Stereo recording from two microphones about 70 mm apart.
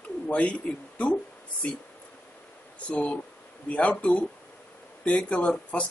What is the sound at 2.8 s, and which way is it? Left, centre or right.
Speech, centre.